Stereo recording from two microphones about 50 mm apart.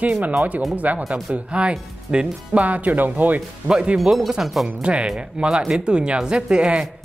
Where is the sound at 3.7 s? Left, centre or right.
Centre.